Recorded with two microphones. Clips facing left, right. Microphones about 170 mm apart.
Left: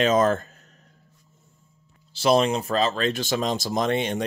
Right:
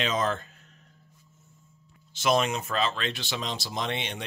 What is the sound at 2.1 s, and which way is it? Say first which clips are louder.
Speech: left 5 dB; 35° left (ahead or behind).